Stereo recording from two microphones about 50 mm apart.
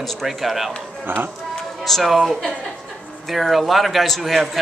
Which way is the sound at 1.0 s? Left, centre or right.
Right.